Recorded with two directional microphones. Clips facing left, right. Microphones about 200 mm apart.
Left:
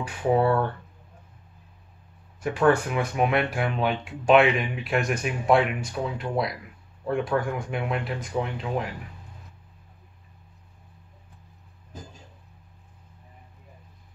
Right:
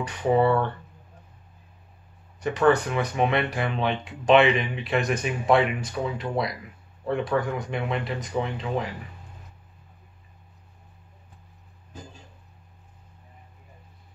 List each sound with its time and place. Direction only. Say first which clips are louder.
0.0 s speech: right 1 dB; 5° left (ahead or behind)
2.4 s speech: right 1 dB; 5° left (ahead or behind)